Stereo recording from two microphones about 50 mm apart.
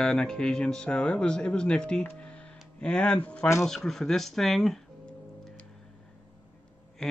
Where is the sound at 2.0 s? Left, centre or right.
Left.